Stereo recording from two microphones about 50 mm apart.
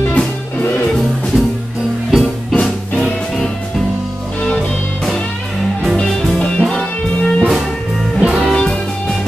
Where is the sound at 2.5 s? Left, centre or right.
Left.